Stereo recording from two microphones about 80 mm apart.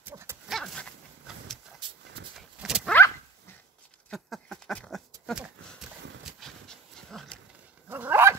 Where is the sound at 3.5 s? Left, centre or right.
Left.